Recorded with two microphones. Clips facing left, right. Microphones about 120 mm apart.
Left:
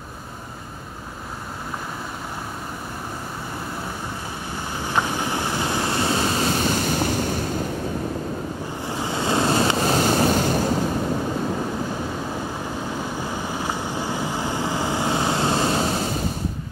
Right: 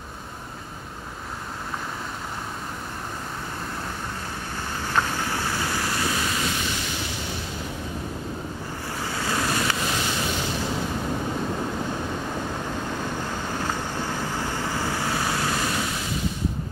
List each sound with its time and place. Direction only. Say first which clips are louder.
4.7 s waves: left 2 dB; 15° left (ahead or behind); by 7.4 s 45° left (ahead or behind)
8.8 s waves: left 5 dB; 20° left (ahead or behind); by 10.6 s 45° left (ahead or behind)
12.9 s vehicle: left 2 dB; 10° left (ahead or behind); by 16.2 s 35° left (ahead or behind)